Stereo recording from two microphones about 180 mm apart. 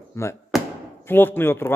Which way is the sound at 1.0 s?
10° left (ahead or behind).